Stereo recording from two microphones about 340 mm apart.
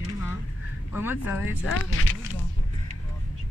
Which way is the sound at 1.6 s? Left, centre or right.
Left.